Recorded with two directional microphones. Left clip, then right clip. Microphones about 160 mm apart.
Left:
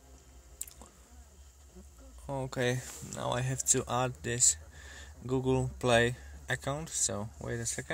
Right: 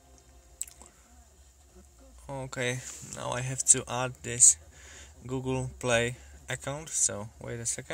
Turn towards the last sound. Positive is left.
turn(degrees=10)  # may be behind; listen again after turning